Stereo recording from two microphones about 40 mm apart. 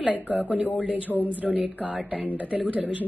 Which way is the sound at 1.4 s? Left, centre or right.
Right.